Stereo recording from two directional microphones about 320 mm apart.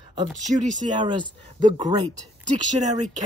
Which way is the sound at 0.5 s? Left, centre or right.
Right.